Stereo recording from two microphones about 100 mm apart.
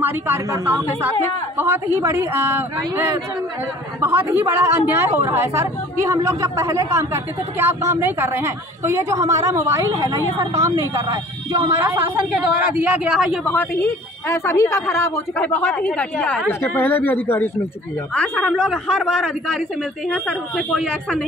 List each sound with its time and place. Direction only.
0.0 s a woman's voice: 20° right (ahead or behind); by 13.4 s 5° right (ahead or behind)
13.5 s speech: 20° left (ahead or behind)
15.4 s speech: 10° left (ahead or behind)
16.4 s speech: 20° left (ahead or behind)
18.1 s a man's voice: 5° left (ahead or behind)